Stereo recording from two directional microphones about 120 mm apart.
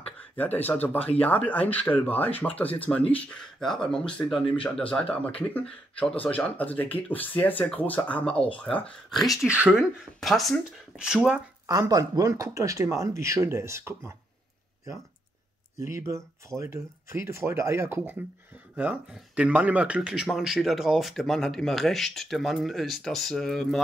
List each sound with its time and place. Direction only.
0.0 s speech: 15° left (ahead or behind)
11.6 s speech: 30° right (ahead or behind)
15.8 s speech: 25° right (ahead or behind)
19.1 s speech: 10° right (ahead or behind)